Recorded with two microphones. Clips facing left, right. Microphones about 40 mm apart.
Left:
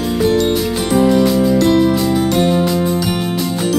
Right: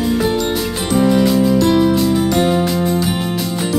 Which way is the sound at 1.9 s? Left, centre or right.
Centre.